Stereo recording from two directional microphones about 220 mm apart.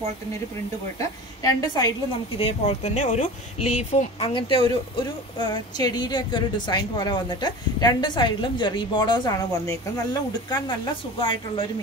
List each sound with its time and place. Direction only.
0.9 s a woman's voice: 15° left (ahead or behind)